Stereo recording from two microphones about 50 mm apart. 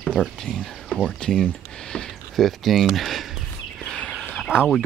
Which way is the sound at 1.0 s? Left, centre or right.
Centre.